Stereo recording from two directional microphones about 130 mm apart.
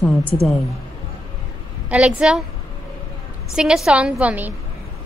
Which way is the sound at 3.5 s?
5° right (ahead or behind).